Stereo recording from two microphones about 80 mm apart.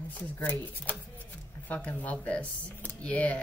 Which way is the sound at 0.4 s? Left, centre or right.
Left.